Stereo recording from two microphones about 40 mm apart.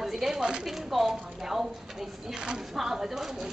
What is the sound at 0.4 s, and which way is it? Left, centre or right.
Speech, right.